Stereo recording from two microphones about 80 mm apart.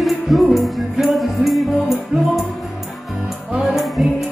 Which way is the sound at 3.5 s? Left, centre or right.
Centre.